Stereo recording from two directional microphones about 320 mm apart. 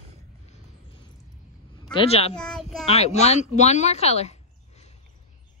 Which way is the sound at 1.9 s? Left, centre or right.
Centre.